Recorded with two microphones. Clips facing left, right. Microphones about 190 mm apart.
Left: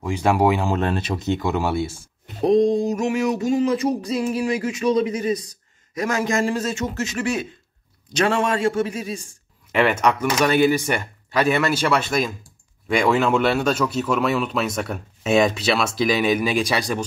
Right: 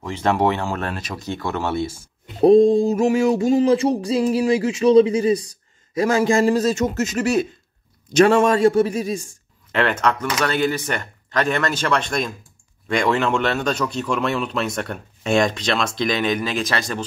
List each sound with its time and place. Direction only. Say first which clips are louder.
0.0 s speech: left 1 dB; 10° left (ahead or behind)
2.4 s music: right 5 dB; 30° right (ahead or behind)
9.7 s speech: left 1 dB; 10° left (ahead or behind)